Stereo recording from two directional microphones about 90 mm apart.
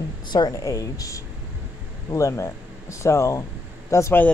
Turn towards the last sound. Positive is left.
turn(degrees=30)  # may be behind; listen again after turning